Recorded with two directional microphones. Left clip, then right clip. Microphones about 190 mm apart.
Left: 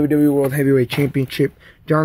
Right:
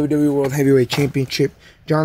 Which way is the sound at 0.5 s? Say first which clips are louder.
Right 1 dB; 10° right (ahead or behind).